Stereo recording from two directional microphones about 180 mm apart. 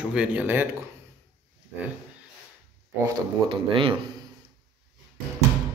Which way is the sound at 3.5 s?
30° right (ahead or behind).